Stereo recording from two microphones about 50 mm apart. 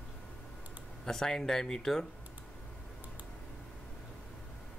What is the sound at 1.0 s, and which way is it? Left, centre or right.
Speech, centre.